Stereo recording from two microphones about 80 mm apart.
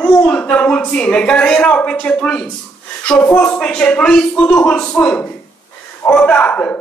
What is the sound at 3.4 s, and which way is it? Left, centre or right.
A man's voice, centre.